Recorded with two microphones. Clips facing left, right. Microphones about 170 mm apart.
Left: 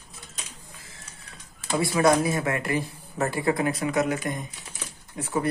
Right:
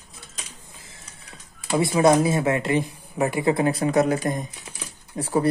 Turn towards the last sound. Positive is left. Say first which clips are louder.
# right 5 dB
turn(degrees=-35)  # may be behind; listen again after turning